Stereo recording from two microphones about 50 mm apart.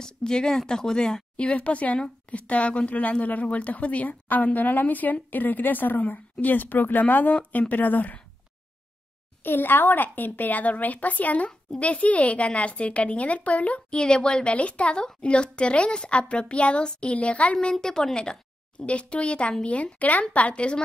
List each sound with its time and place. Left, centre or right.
0.0 s speech: centre
1.3 s speech: left
9.4 s speech: left